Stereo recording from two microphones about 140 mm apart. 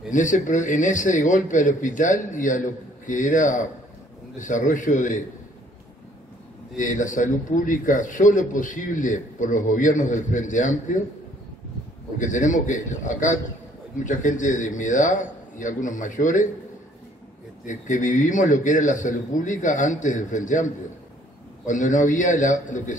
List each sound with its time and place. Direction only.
0.1 s a man's voice: 65° left (ahead or behind)
6.8 s a man's voice: 65° left (ahead or behind)
12.2 s a man's voice: 65° left (ahead or behind)
17.6 s a man's voice: 65° left (ahead or behind)
21.6 s a man's voice: 65° left (ahead or behind)